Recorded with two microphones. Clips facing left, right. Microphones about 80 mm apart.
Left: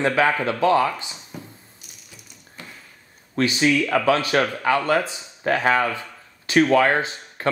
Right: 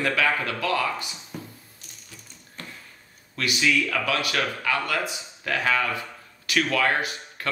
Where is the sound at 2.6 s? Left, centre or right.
Centre.